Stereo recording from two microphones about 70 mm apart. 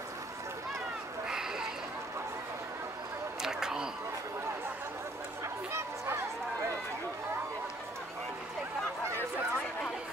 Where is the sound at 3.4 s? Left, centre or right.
Centre.